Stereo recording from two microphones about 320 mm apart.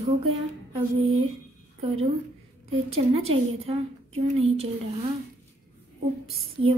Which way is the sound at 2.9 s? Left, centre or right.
Centre.